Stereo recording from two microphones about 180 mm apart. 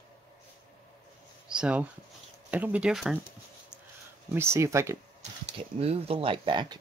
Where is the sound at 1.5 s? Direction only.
5° right (ahead or behind).